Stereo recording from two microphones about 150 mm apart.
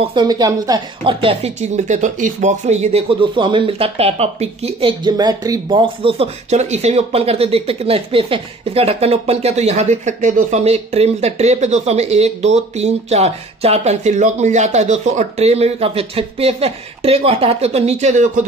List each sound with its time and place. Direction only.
0.0 s speech: 30° right (ahead or behind)
1.2 s speech: 45° right (ahead or behind)